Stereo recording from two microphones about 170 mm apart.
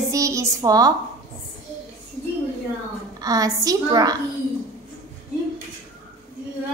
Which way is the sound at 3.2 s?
20° right (ahead or behind).